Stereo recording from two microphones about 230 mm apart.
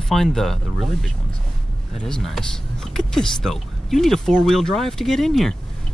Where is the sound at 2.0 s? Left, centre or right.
Centre.